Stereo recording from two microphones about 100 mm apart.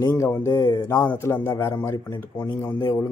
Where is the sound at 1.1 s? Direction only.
20° left (ahead or behind).